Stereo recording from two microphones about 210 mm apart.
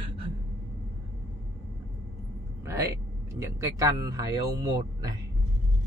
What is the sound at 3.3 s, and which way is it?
Speech, 15° right (ahead or behind).